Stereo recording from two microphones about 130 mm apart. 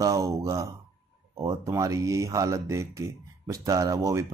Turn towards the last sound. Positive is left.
turn(degrees=-25)  # may be behind; listen again after turning